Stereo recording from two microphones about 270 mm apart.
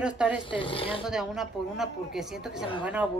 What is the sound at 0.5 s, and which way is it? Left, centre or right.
Speech, centre.